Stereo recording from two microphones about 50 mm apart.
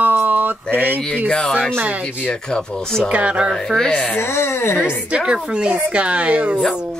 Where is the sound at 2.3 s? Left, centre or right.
Centre.